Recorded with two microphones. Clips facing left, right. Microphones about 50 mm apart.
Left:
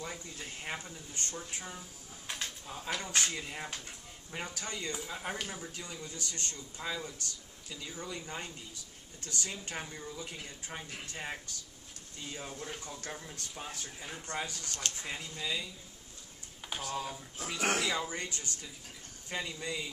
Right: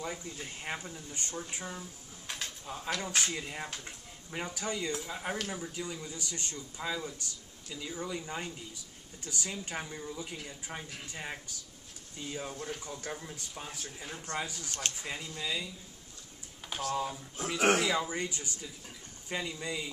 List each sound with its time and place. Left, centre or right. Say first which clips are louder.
0.0 s speech: right 3 dB; centre
2.2 s a sound: right 1 dB; centre
3.0 s speech: right 1 dB; centre
6.0 s speech: right 1 dB; centre
6.8 s speech: right 2 dB; centre
7.9 s speech: right 5 dB; centre
8.2 s speech: right 3 dB; centre
9.2 s speech: right 1 dB; centre
14.5 s speech: right 1 dB; centre
15.0 s speech: right 1 dB; centre